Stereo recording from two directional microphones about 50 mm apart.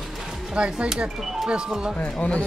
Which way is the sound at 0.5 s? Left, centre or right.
Centre.